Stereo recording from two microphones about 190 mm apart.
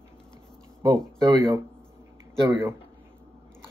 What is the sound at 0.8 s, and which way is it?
Speech, 20° right (ahead or behind).